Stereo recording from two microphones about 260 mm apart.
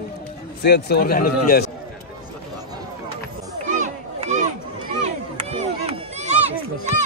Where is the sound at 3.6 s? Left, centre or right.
Right.